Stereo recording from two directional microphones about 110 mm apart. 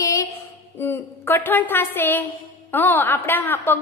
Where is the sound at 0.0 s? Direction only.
30° left (ahead or behind).